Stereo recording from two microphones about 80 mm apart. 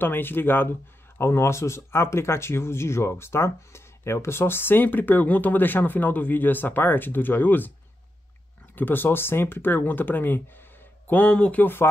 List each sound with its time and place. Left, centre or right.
0.0 s speech: left
8.7 s speech: left